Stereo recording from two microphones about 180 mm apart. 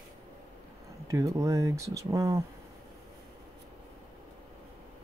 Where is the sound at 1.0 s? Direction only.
15° right (ahead or behind).